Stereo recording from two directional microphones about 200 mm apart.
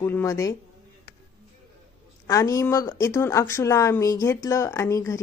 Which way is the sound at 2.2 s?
15° left (ahead or behind).